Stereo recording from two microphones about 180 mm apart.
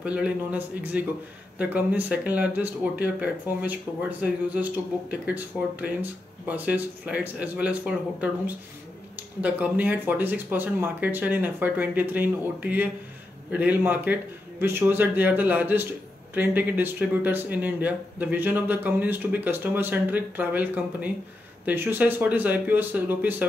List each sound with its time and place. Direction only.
0.0 s speech: 5° right (ahead or behind)